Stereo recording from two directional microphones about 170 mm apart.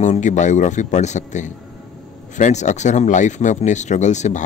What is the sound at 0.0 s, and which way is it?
Speech, 45° left (ahead or behind).